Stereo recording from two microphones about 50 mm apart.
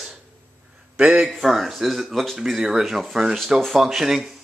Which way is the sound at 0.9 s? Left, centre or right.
Right.